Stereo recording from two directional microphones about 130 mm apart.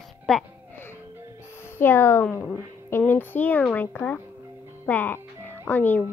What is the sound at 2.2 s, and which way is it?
Speech, 5° left (ahead or behind).